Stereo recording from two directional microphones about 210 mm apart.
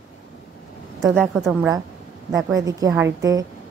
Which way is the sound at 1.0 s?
5° right (ahead or behind).